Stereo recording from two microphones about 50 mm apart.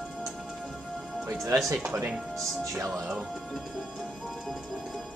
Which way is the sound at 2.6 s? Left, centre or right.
Right.